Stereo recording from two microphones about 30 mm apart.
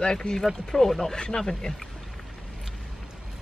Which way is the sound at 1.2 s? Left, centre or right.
Left.